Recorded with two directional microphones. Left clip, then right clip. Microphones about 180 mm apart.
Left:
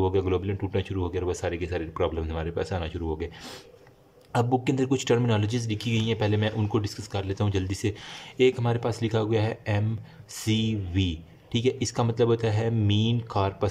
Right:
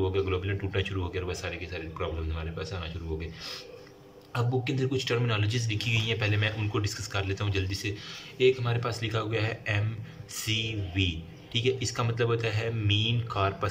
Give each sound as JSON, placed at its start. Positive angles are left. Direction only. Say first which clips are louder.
{"t": 0.0, "sound": "speech", "louder": "left 4 dB", "side_deg": 35}